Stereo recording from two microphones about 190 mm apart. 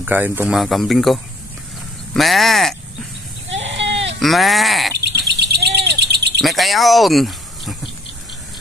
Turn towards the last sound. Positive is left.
turn(degrees=0)  # may be behind; listen again after turning